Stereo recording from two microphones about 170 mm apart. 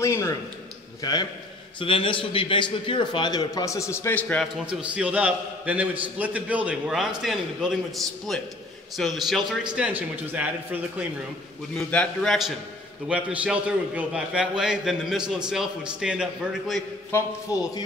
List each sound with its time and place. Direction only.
0.0 s a man's voice: 15° left (ahead or behind)
4.6 s a man's voice: 10° right (ahead or behind)
11.7 s a man's voice: 5° left (ahead or behind)
17.1 s a man's voice: 15° left (ahead or behind)